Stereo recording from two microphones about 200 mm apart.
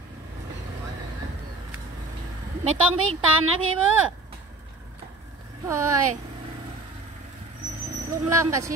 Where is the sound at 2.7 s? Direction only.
90° right.